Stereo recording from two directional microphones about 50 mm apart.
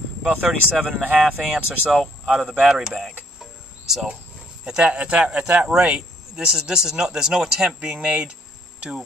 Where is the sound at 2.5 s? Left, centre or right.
Centre.